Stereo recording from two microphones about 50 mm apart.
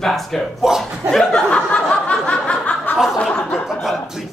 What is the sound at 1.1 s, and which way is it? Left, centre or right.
Chuckle, centre.